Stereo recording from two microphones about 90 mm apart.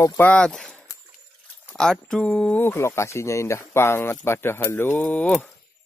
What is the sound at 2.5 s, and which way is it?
Speech, 25° left (ahead or behind).